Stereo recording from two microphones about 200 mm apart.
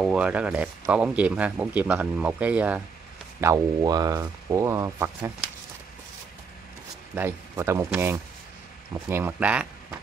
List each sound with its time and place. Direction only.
0.0 s speech: 5° right (ahead or behind)
7.2 s speech: 10° right (ahead or behind)